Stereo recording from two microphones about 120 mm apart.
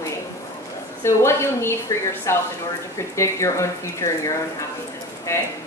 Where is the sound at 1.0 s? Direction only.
20° left (ahead or behind).